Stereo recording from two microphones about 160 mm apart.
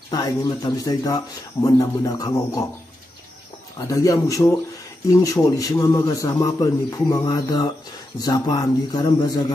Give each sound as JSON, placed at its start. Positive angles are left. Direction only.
{"t": 0.1, "sound": "speech", "side_deg": 25}
{"t": 3.7, "sound": "speech", "side_deg": 20}